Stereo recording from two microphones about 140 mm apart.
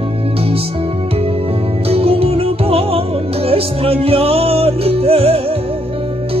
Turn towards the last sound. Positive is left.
turn(degrees=-45)  # may be behind; listen again after turning